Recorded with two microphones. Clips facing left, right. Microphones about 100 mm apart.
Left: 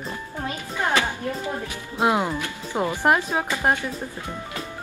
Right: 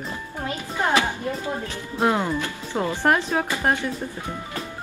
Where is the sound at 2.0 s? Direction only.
15° left (ahead or behind).